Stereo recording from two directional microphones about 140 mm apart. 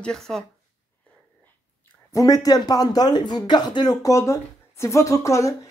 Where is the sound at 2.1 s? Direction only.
25° left (ahead or behind).